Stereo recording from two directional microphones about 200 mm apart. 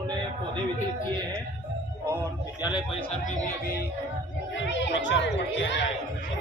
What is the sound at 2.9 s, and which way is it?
Speech, 35° left (ahead or behind).